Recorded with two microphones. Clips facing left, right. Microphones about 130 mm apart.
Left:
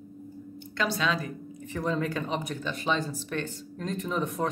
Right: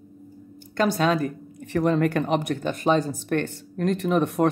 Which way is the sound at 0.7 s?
45° right (ahead or behind).